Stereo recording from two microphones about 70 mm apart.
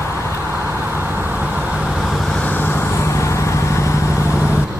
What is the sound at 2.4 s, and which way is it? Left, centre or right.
Vehicle, left.